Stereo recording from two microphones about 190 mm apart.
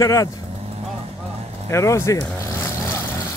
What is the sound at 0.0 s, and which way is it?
Speech, 15° left (ahead or behind).